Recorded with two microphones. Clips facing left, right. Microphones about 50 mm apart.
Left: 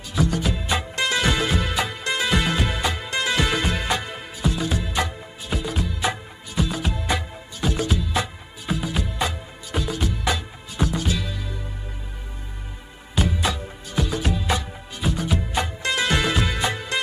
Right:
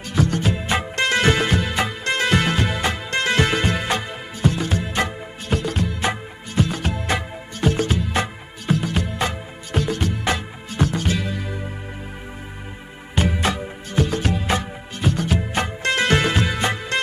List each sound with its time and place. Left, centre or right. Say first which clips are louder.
0.1 s music: right 2 dB; right
13.1 s music: right 3 dB; right